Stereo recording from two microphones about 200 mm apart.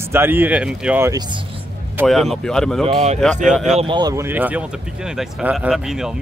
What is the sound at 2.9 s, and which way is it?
Speech, 35° right (ahead or behind).